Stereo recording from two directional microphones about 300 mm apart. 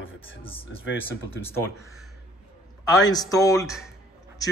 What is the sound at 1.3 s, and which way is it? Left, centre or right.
Speech, centre.